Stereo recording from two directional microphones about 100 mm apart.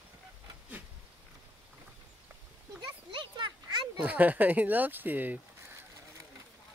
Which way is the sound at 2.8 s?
50° right (ahead or behind).